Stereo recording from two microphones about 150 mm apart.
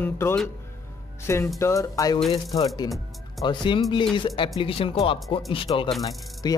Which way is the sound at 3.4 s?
35° left (ahead or behind).